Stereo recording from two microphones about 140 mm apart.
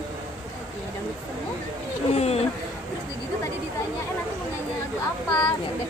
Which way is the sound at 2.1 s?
45° left (ahead or behind).